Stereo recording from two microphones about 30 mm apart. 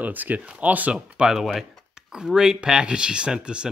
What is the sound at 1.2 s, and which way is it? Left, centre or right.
Speech, right.